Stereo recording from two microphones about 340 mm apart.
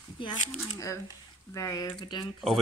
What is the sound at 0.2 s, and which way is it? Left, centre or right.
Speech, centre.